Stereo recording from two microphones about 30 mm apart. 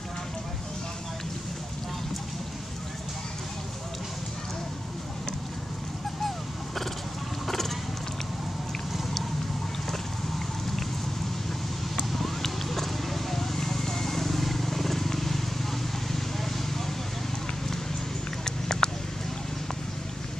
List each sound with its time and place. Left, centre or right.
6.2 s a sound: centre
7.4 s vehicle: centre
12.1 s clip-clop: centre
18.4 s clip-clop: left